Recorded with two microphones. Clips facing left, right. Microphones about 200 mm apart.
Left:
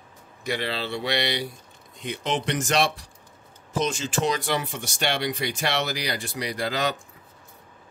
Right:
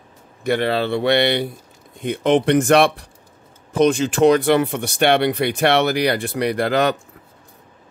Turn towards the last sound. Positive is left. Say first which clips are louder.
# right 9 dB
turn(degrees=-60)  # may be behind; listen again after turning